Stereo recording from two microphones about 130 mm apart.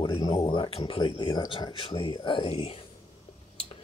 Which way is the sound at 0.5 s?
45° left (ahead or behind).